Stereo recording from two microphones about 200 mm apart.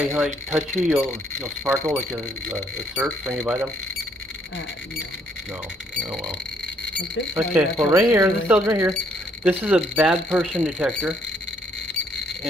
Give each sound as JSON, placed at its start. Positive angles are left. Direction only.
{"t": 0.1, "sound": "speech", "side_deg": 0}
{"t": 1.4, "sound": "speech", "side_deg": -15}
{"t": 5.9, "sound": "speech", "side_deg": 0}
{"t": 7.3, "sound": "speech", "side_deg": -10}